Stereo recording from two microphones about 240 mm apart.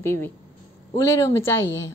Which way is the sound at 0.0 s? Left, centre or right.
Centre.